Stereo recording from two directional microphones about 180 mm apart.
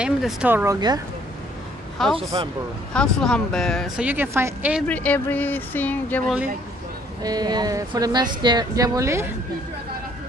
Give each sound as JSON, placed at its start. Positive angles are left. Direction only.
{"t": 0.0, "sound": "speech", "side_deg": -5}
{"t": 0.7, "sound": "speech", "side_deg": -25}
{"t": 2.0, "sound": "a woman's voice", "side_deg": 0}
{"t": 4.8, "sound": "speech", "side_deg": 10}
{"t": 7.2, "sound": "speech", "side_deg": -20}